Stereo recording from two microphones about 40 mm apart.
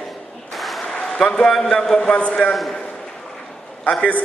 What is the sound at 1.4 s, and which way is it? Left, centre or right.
Speech, centre.